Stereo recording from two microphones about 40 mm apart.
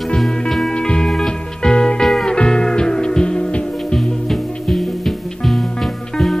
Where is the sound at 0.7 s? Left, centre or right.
Left.